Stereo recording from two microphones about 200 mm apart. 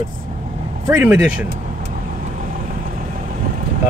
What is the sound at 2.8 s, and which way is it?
Vehicle, 40° right (ahead or behind).